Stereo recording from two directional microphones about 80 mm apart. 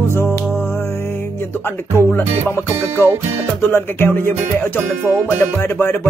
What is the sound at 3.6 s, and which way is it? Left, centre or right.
Music, left.